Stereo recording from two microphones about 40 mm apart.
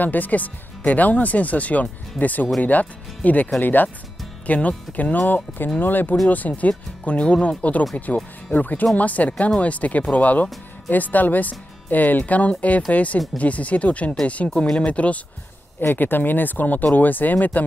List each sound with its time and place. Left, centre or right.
0.0 s speech: left
3.6 s speech: left
4.5 s speech: left
6.2 s speech: left
15.8 s speech: left